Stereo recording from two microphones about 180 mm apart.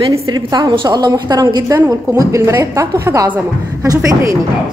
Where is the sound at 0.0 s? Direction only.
20° right (ahead or behind).